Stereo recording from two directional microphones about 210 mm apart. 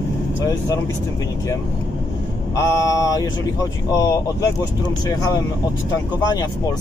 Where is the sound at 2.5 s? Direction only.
15° left (ahead or behind).